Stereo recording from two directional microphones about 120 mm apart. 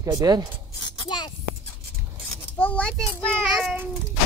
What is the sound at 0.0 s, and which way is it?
Speech, 30° right (ahead or behind).